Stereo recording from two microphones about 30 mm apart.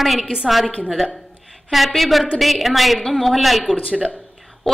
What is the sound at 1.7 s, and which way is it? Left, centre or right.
A woman's voice, centre.